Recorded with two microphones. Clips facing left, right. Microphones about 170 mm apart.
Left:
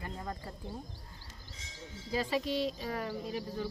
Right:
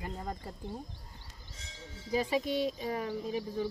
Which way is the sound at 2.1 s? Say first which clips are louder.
Right 2 dB; 15° right (ahead or behind).